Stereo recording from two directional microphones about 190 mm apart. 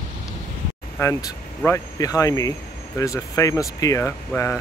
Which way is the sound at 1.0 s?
15° left (ahead or behind).